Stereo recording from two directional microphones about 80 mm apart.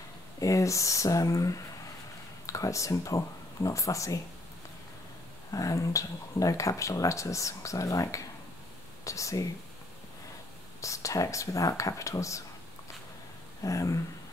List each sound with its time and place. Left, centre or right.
0.4 s speech: left
5.5 s speech: left
10.8 s speech: left
13.6 s speech: left